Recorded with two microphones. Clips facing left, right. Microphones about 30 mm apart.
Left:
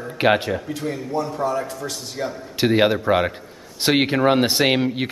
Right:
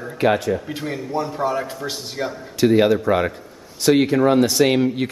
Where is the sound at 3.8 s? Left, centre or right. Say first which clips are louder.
Right 2 dB; left.